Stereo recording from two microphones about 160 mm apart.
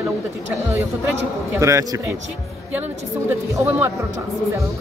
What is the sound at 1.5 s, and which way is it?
Speech, 20° right (ahead or behind).